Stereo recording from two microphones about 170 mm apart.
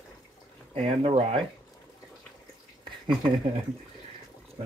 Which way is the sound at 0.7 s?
30° right (ahead or behind).